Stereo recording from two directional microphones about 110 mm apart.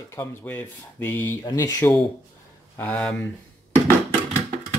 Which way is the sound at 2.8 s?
10° left (ahead or behind).